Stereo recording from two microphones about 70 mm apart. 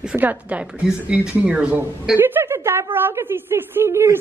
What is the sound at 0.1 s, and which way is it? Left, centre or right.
A woman's voice, centre.